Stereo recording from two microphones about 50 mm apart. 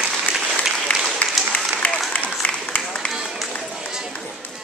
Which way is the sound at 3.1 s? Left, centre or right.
Centre.